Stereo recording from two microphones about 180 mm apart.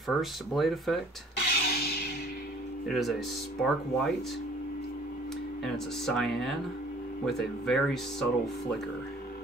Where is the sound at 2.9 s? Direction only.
Centre (ahead or behind).